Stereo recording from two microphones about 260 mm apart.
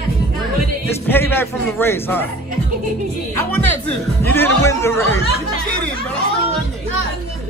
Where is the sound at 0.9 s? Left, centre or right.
Centre.